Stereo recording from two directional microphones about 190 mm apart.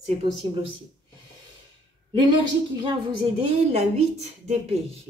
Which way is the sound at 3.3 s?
30° right (ahead or behind).